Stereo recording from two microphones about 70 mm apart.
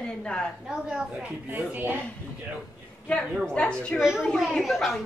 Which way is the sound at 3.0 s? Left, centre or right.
Centre.